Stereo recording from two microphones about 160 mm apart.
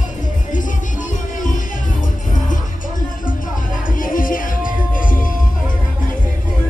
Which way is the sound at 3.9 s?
60° left (ahead or behind).